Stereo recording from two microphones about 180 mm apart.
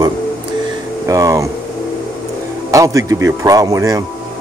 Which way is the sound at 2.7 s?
15° right (ahead or behind).